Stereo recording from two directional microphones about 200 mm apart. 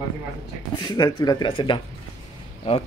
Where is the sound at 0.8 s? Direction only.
20° left (ahead or behind).